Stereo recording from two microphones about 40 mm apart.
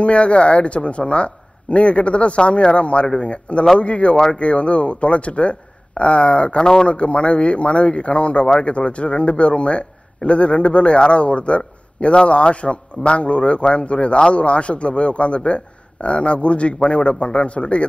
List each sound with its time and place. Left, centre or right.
0.0 s a man's voice: left
6.9 s a man's voice: left